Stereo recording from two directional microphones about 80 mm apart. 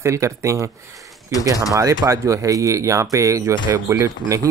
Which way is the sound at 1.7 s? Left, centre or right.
Right.